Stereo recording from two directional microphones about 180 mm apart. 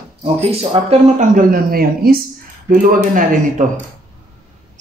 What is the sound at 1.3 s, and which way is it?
A man's voice, 50° right (ahead or behind).